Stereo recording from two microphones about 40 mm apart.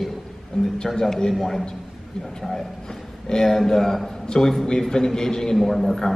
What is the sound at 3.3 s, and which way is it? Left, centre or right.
A man's voice, centre.